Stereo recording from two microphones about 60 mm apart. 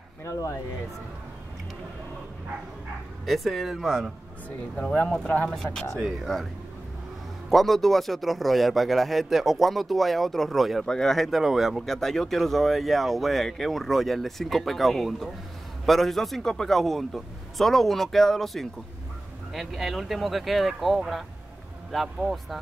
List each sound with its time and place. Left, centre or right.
0.2 s speech: left
3.3 s speech: centre
5.9 s speech: centre
7.4 s speech: centre